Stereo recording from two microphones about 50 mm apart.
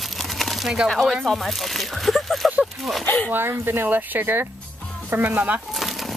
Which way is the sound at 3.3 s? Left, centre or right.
Right.